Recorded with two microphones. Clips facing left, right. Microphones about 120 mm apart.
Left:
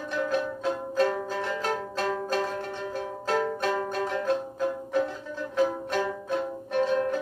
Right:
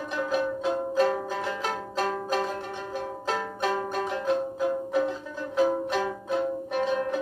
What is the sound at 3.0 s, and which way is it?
Music, 5° right (ahead or behind).